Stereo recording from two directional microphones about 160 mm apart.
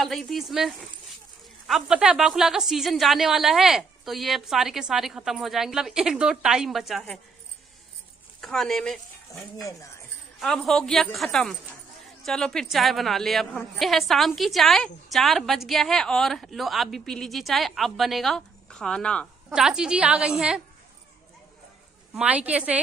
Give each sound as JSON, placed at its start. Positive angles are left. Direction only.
{"t": 0.0, "sound": "a woman's voice", "side_deg": 0}
{"t": 8.4, "sound": "speech", "side_deg": 0}
{"t": 9.6, "sound": "speech", "side_deg": 20}
{"t": 10.4, "sound": "a woman's voice", "side_deg": 0}
{"t": 22.1, "sound": "a woman's voice", "side_deg": -10}